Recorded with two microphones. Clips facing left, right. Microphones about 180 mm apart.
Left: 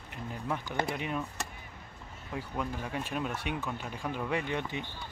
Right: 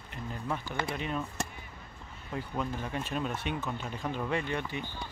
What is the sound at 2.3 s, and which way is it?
Speech, 10° left (ahead or behind).